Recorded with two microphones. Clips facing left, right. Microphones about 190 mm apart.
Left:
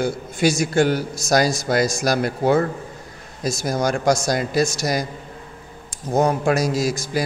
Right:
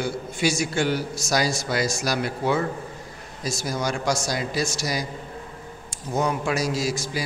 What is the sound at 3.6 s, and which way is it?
A man's voice, 45° left (ahead or behind).